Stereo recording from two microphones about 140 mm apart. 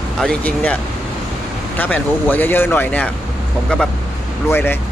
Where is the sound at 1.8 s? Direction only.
10° left (ahead or behind).